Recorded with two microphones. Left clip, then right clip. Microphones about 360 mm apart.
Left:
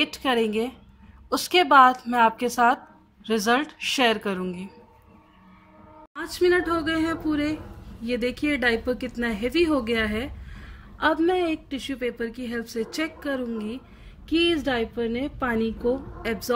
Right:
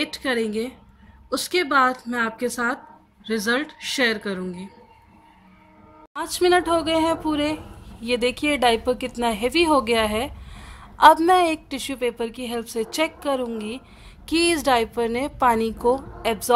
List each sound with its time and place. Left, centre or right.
0.0 s a woman's voice: centre
6.1 s speech: centre